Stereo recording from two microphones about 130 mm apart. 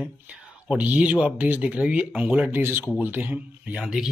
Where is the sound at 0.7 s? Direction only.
10° right (ahead or behind).